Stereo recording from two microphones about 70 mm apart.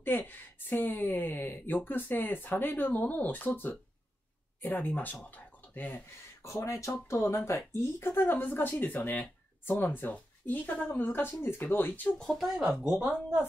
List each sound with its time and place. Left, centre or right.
0.0 s speech: left
6.4 s speech: left
12.2 s speech: centre
12.7 s speech: centre